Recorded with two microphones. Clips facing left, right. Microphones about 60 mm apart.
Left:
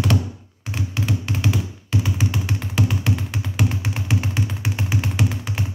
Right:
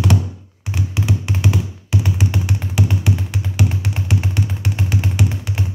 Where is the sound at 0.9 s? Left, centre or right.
Centre.